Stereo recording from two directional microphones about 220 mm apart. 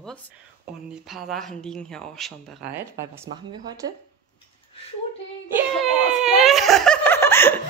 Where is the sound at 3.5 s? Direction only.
15° right (ahead or behind).